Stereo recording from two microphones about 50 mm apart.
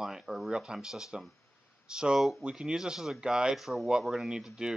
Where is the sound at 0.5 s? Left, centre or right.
Centre.